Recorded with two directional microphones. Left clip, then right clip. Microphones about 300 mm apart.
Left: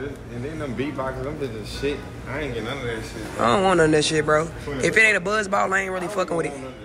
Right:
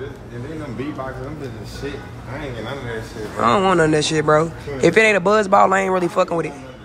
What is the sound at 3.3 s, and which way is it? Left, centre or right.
A man's voice, centre.